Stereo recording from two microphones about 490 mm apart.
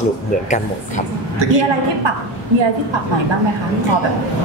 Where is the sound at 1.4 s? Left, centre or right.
Right.